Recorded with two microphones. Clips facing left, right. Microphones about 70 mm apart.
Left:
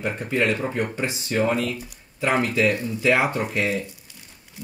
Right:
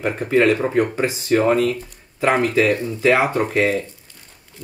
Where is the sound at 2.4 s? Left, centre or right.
Right.